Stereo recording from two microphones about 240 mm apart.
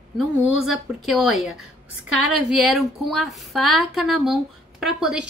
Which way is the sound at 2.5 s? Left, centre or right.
Centre.